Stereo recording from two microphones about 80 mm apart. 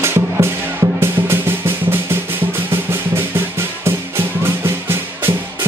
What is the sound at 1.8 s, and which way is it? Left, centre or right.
Drum, right.